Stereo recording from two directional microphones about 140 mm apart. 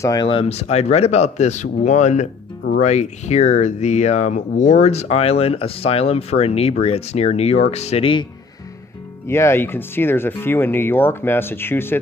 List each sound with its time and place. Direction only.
0.0 s speech: 25° left (ahead or behind)
0.3 s speech: 45° left (ahead or behind)
9.3 s speech: 20° left (ahead or behind)